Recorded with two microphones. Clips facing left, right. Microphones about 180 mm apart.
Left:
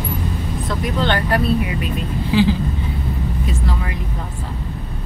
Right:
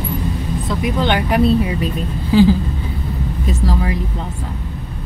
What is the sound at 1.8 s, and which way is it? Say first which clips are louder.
Speech: right 1 dB; 40° right (ahead or behind).